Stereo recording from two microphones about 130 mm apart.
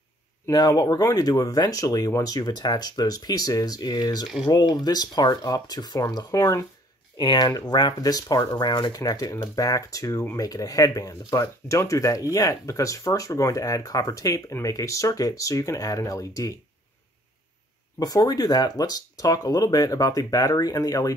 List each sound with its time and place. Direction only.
0.5 s speech: 30° left (ahead or behind)
17.9 s speech: 30° left (ahead or behind)